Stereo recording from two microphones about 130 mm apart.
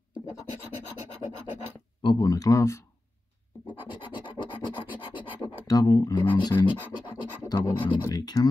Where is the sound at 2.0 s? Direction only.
30° left (ahead or behind).